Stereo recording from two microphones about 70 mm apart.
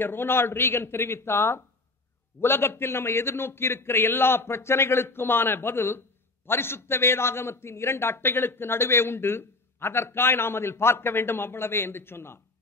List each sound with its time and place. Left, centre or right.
0.0 s a man's voice: left